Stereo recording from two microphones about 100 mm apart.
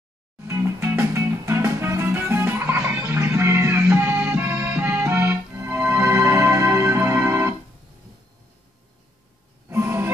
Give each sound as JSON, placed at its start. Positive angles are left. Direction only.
{"t": 0.5, "sound": "music", "side_deg": -25}
{"t": 9.7, "sound": "music", "side_deg": -25}